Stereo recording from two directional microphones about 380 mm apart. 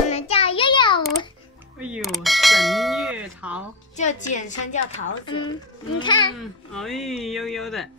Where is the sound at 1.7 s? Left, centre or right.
Centre.